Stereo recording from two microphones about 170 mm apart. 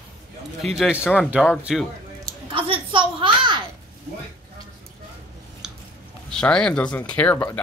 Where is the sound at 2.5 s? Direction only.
30° right (ahead or behind).